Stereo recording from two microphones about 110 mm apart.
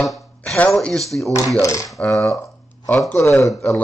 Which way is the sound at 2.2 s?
25° left (ahead or behind).